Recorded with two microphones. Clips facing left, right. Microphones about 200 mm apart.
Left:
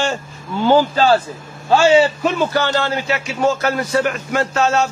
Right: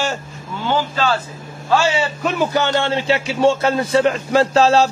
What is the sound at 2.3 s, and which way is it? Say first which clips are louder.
A man's voice: right 4 dB; 20° right (ahead or behind).